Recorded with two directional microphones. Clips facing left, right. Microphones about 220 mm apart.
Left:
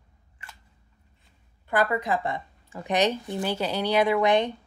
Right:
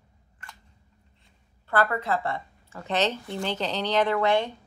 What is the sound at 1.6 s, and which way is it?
A woman's voice, 15° left (ahead or behind).